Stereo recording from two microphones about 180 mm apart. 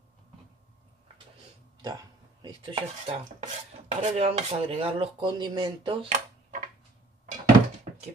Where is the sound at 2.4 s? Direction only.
30° right (ahead or behind).